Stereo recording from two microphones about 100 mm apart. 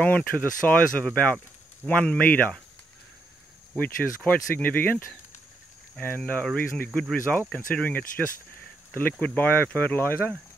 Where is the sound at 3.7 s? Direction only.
15° left (ahead or behind).